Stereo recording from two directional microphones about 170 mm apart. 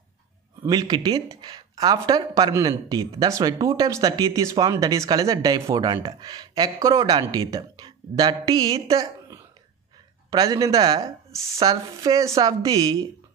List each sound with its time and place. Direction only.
0.7 s speech: 25° right (ahead or behind)